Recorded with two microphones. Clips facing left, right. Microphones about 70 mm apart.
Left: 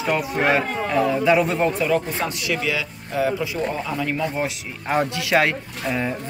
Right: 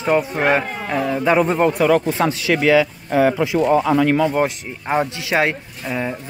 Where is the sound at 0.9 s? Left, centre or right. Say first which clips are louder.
Even; centre.